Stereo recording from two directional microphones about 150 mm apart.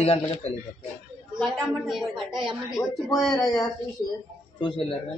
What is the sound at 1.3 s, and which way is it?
Speech, centre (ahead or behind).